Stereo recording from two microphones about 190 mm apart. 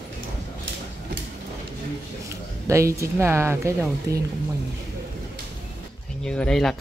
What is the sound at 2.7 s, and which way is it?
Speech, 15° right (ahead or behind).